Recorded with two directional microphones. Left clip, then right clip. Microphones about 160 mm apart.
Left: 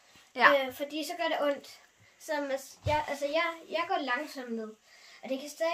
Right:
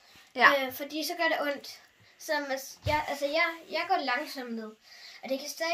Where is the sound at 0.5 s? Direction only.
5° left (ahead or behind).